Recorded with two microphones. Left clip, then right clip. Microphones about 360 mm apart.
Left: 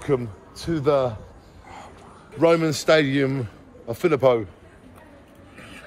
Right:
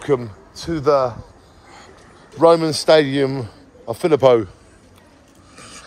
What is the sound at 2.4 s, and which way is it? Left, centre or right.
A man's voice, centre.